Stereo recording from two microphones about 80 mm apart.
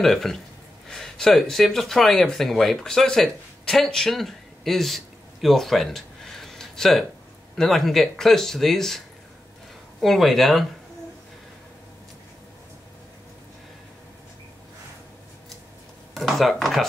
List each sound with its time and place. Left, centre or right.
0.0 s speech: centre
16.2 s speech: centre